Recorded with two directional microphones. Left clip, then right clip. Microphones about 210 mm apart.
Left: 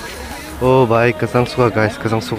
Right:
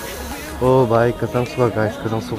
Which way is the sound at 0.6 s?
10° left (ahead or behind).